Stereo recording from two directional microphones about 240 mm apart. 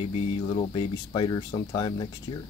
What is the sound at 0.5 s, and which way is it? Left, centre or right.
Speech, left.